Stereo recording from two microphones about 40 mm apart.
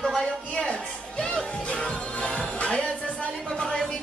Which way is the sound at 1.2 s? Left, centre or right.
Left.